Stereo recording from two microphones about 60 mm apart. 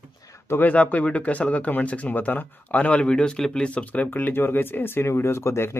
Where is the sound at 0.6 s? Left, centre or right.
Left.